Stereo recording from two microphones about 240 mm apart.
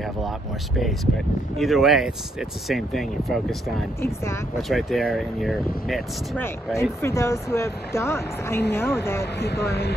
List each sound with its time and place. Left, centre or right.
1.6 s speech: centre
4.0 s speech: centre
4.6 s speech: centre
9.4 s speech: left